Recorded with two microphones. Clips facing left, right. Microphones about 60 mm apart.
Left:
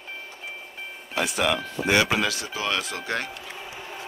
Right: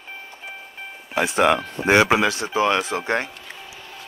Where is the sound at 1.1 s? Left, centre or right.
Right.